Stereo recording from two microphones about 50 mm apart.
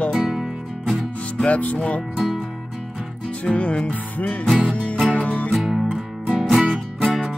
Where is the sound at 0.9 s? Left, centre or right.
Centre.